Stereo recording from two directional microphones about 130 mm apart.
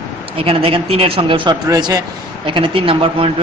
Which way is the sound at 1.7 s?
30° right (ahead or behind).